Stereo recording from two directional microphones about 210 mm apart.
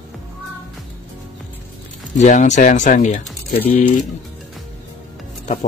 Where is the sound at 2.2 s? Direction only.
35° left (ahead or behind).